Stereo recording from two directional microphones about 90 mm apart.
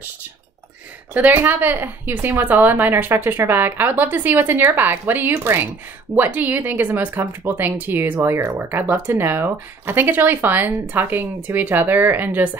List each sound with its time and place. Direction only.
1.1 s a woman's voice: 20° right (ahead or behind)